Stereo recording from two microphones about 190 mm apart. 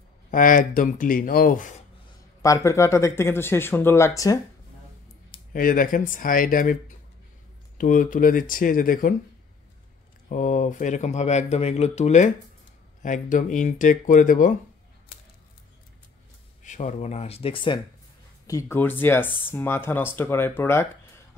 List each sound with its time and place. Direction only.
0.3 s speech: 45° left (ahead or behind)
2.4 s speech: 15° left (ahead or behind)
5.5 s speech: 45° left (ahead or behind)
10.3 s speech: 40° left (ahead or behind)
16.6 s speech: 40° left (ahead or behind)
18.5 s speech: 15° left (ahead or behind)